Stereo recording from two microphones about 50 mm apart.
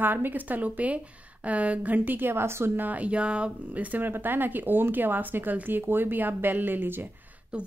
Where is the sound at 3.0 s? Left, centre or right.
Right.